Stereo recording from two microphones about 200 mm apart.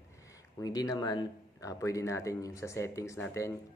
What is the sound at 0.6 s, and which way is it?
Speech, 20° left (ahead or behind).